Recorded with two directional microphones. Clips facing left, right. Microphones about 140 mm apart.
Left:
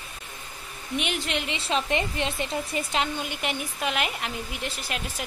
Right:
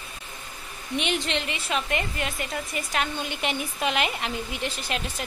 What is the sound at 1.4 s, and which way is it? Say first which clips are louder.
Speech: left 2 dB; 25° left (ahead or behind).